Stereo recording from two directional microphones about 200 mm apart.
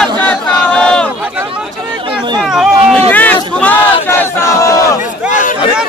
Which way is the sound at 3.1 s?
10° left (ahead or behind).